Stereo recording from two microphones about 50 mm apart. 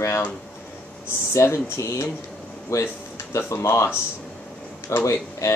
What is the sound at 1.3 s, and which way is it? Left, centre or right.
Speech, left.